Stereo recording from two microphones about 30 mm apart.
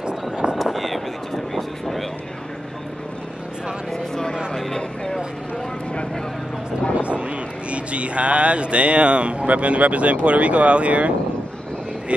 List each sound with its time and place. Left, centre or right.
0.6 s vehicle: centre
3.9 s vehicle: centre
7.0 s speech: right